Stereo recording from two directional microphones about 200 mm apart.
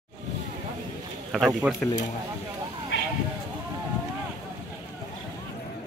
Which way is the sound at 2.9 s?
70° left (ahead or behind).